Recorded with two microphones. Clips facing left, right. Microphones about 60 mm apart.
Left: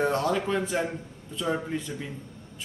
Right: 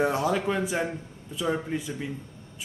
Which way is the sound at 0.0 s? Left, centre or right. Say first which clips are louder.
Right 1 dB; centre.